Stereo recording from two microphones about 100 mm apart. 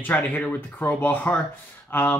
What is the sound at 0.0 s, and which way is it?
Speech, 15° left (ahead or behind).